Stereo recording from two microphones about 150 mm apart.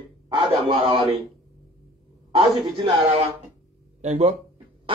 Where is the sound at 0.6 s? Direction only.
40° right (ahead or behind).